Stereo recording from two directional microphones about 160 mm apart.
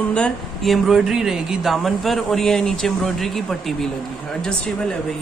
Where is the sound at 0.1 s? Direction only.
5° left (ahead or behind).